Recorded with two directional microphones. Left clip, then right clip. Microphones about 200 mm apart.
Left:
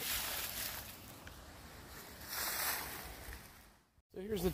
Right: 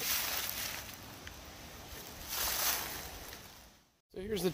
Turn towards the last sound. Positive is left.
turn(degrees=5)  # may be behind; listen again after turning